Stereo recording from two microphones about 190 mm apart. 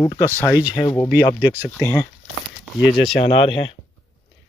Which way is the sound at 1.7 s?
10° left (ahead or behind).